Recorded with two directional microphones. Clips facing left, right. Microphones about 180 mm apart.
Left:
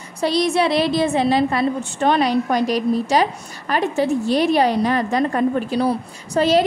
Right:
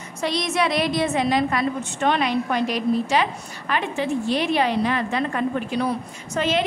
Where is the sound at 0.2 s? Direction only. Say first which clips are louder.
Left 5 dB; 35° left (ahead or behind).